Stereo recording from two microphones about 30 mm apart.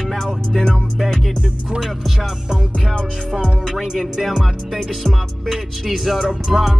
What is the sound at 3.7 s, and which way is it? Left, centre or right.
Music, centre.